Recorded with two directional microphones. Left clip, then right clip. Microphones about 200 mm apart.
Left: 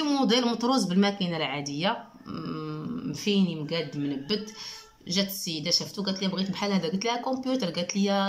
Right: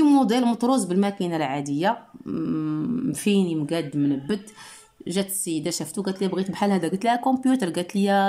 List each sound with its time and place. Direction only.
0.0 s speech: 30° right (ahead or behind)
5.0 s speech: 40° right (ahead or behind)